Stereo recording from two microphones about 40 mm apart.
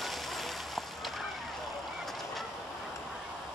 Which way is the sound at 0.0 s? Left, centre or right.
Centre.